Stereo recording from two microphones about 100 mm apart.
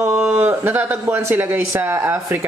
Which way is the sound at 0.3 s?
20° right (ahead or behind).